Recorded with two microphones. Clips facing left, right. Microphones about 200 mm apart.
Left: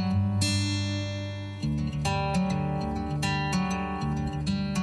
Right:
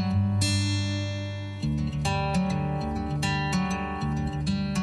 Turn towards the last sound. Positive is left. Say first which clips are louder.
# right 1 dB
turn(degrees=0)  # may be behind; listen again after turning